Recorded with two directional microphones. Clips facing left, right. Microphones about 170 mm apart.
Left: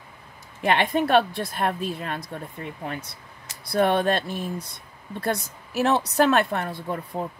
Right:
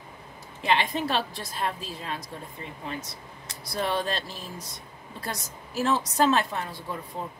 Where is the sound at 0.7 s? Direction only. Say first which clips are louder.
Left 5 dB; 60° left (ahead or behind).